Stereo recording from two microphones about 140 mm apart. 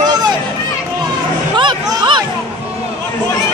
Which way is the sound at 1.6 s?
35° right (ahead or behind).